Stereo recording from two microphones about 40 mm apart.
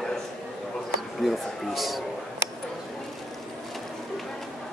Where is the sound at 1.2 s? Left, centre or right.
Centre.